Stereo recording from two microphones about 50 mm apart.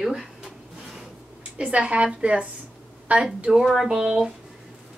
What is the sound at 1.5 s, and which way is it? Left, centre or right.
A woman's voice, right.